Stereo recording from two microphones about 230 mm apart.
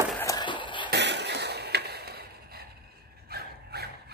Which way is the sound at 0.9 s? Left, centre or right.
Right.